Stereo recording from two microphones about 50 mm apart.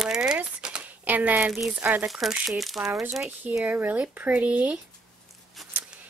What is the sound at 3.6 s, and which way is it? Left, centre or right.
Speech, right.